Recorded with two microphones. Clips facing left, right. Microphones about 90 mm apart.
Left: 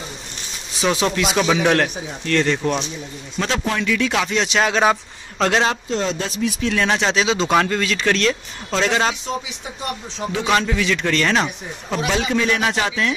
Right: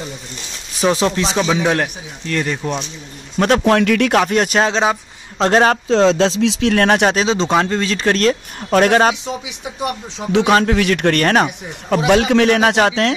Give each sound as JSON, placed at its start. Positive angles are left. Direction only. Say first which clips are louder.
{"t": 1.0, "sound": "speech", "louder": "right 2 dB", "side_deg": -30}
{"t": 1.4, "sound": "speech", "louder": "even", "side_deg": -10}
{"t": 3.3, "sound": "speech", "louder": "right 9 dB", "side_deg": -55}
{"t": 4.6, "sound": "speech", "louder": "even", "side_deg": -30}
{"t": 5.4, "sound": "speech", "louder": "right 5 dB", "side_deg": -45}
{"t": 5.9, "sound": "speech", "louder": "right 10 dB", "side_deg": -90}
{"t": 6.7, "sound": "speech", "louder": "right 5 dB", "side_deg": -55}
{"t": 7.2, "sound": "speech", "louder": "right 2 dB", "side_deg": -30}
{"t": 8.7, "sound": "speech", "louder": "right 7 dB", "side_deg": -55}
{"t": 9.1, "sound": "speech", "louder": "right 1 dB", "side_deg": -15}
{"t": 10.7, "sound": "speech", "louder": "right 5 dB", "side_deg": -60}
{"t": 12.1, "sound": "speech", "louder": "right 8 dB", "side_deg": -65}